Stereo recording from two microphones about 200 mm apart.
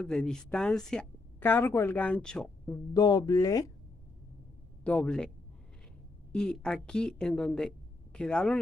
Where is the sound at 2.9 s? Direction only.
20° left (ahead or behind).